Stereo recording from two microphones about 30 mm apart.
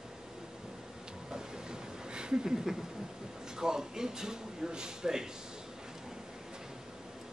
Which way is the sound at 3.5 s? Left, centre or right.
Right.